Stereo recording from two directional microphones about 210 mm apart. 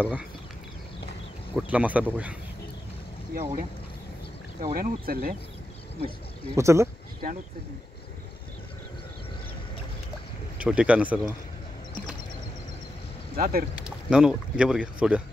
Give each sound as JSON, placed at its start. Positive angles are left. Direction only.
{"t": 0.0, "sound": "speech", "side_deg": -5}
{"t": 1.5, "sound": "speech", "side_deg": -5}
{"t": 4.6, "sound": "speech", "side_deg": -40}
{"t": 5.9, "sound": "speech", "side_deg": 25}
{"t": 6.5, "sound": "speech", "side_deg": -15}
{"t": 10.6, "sound": "speech", "side_deg": -5}
{"t": 13.4, "sound": "speech", "side_deg": -45}
{"t": 13.7, "sound": "speech", "side_deg": -5}